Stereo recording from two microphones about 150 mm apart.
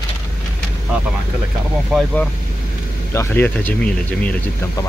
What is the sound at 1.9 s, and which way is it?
Speech, 5° left (ahead or behind).